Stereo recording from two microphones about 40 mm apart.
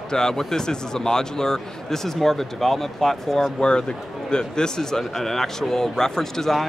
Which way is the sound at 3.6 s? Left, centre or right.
Left.